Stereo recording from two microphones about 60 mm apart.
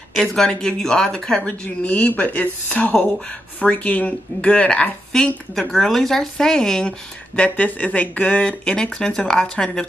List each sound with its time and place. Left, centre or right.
0.1 s speech: centre
1.4 s speech: left
5.1 s speech: centre
7.3 s speech: left